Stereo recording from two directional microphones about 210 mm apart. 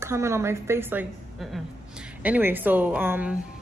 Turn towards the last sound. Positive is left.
turn(degrees=-10)  # may be behind; listen again after turning